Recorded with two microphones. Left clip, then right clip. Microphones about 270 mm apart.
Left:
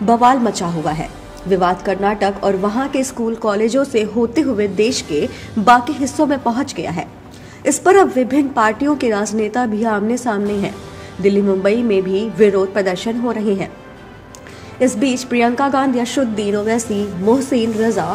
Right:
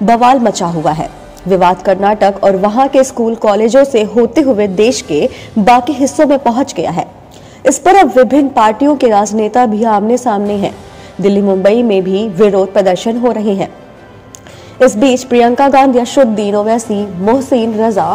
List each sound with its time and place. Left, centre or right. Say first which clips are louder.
0.0 s a woman's voice: right 5 dB; centre
8.1 s a woman's voice: right 9 dB; centre
14.9 s a woman's voice: right 9 dB; centre